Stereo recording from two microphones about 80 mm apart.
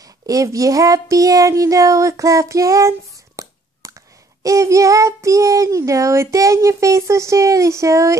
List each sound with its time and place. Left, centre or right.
0.0 s speech: right
4.4 s child singing: right